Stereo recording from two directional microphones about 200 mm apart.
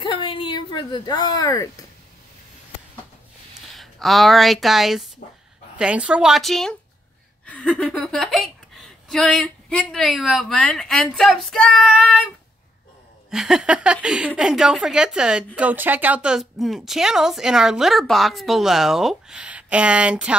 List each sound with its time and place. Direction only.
0.0 s a sound: 25° left (ahead or behind)
3.7 s a woman's voice: centre (ahead or behind)
13.3 s a woman's voice: centre (ahead or behind)